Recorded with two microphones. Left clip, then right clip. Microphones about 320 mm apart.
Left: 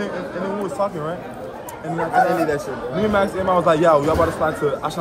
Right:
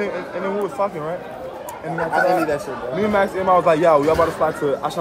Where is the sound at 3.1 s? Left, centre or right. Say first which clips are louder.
Right 2 dB; right.